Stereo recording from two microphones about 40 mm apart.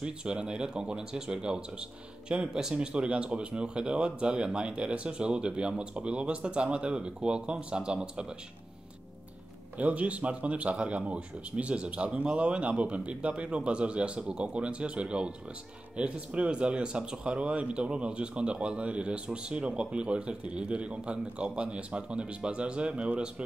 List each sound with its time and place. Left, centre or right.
0.0 s speech: right
9.8 s a man's voice: right